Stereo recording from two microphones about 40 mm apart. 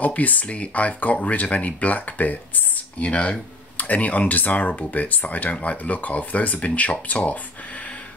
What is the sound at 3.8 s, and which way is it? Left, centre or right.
Speech, left.